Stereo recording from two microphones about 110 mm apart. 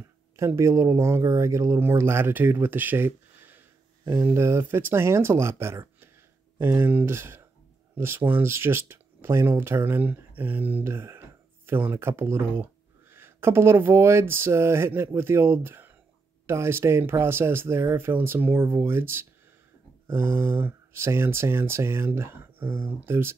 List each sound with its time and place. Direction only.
0.0 s speech: 25° right (ahead or behind)